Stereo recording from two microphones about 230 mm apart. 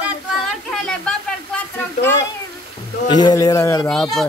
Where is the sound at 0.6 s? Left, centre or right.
Centre.